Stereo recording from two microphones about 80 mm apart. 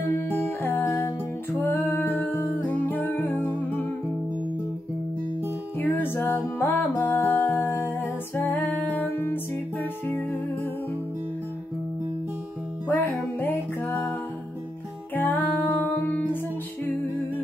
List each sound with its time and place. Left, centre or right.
0.1 s music: left
5.8 s music: left
12.8 s music: left
15.1 s music: left